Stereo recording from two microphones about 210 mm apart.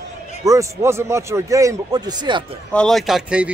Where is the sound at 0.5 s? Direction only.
15° right (ahead or behind).